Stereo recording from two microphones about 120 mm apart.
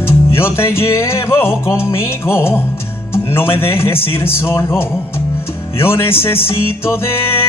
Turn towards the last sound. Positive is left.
turn(degrees=20)  # may be behind; listen again after turning